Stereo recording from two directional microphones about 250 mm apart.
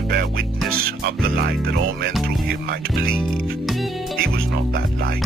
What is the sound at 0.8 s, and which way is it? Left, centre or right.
Speech, right.